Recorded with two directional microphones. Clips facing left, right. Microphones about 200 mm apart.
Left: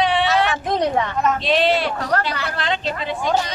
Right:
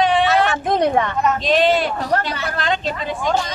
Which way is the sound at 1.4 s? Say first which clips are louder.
Right 3 dB; 45° right (ahead or behind).